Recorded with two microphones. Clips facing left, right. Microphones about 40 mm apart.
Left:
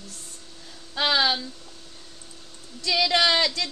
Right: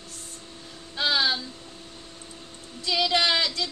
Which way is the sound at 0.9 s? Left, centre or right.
Left.